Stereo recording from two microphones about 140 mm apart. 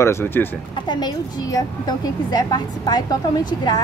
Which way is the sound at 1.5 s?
25° left (ahead or behind).